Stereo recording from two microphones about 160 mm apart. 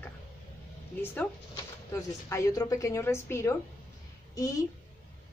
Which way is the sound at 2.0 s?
20° left (ahead or behind).